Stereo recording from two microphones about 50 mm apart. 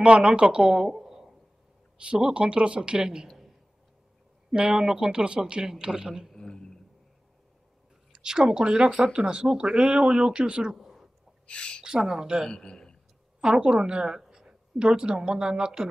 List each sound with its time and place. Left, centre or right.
0.0 s a woman's voice: right; by 1.3 s centre
2.0 s speech: centre
4.6 s speech: centre
6.3 s a sound: centre
8.1 s speech: centre
10.7 s a sound: centre
11.4 s a woman's voice: left
11.8 s speech: centre
12.4 s a man's voice: centre
13.4 s a woman's voice: centre